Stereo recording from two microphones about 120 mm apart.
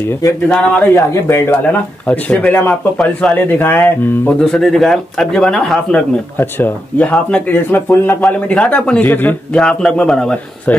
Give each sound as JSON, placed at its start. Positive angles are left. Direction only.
{"t": 0.5, "sound": "speech", "side_deg": 10}
{"t": 0.9, "sound": "speech", "side_deg": 25}
{"t": 4.4, "sound": "speech", "side_deg": 5}